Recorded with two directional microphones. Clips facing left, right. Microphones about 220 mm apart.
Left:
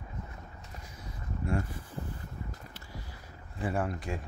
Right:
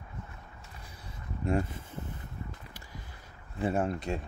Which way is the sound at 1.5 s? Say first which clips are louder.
Right 4 dB; 25° right (ahead or behind).